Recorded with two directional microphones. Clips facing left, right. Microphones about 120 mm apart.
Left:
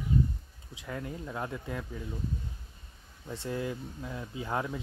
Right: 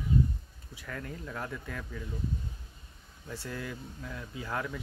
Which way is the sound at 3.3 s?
20° left (ahead or behind).